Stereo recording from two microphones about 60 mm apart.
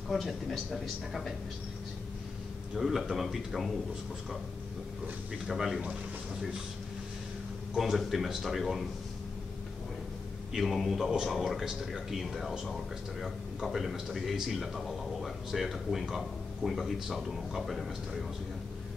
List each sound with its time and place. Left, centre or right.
0.1 s speech: centre
2.8 s speech: centre
5.5 s speech: centre
7.7 s speech: centre
10.5 s speech: centre